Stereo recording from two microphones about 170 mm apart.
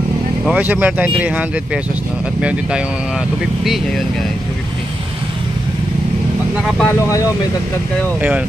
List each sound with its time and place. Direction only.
0.5 s speech: 10° right (ahead or behind)
6.8 s speech: 15° left (ahead or behind)
8.2 s speech: 5° right (ahead or behind)